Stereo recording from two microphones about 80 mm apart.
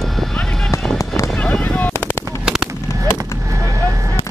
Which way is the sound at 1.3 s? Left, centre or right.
Centre.